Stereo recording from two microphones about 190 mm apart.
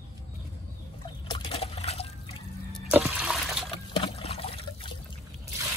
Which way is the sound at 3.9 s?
30° left (ahead or behind).